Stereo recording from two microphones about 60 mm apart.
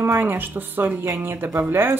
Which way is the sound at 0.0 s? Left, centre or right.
Right.